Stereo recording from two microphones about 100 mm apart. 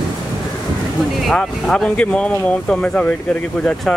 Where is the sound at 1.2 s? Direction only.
5° left (ahead or behind).